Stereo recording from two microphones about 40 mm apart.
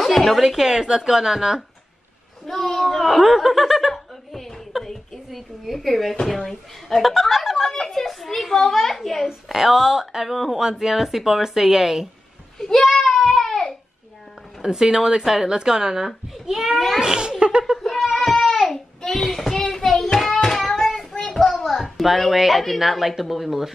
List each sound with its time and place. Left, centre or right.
0.0 s a woman's voice: centre
0.7 s speech: centre
2.4 s speech: centre
3.9 s a sound: centre
6.2 s speech: centre
12.5 s a child's voice: centre
13.2 s a sound: centre
14.6 s speech: centre
17.0 s speech: centre
18.0 s a sound: centre
19.2 s child singing: centre
20.4 s a sound: centre
22.0 s speech: centre